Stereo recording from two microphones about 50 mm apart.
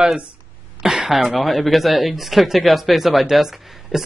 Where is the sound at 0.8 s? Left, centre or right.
Centre.